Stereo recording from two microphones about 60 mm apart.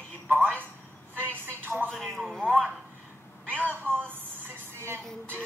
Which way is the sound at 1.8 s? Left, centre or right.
Centre.